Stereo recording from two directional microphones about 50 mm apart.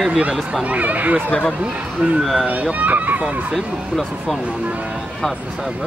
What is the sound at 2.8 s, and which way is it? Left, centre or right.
Speech, right.